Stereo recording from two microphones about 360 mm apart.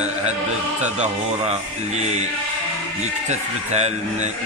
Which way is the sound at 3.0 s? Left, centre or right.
Centre.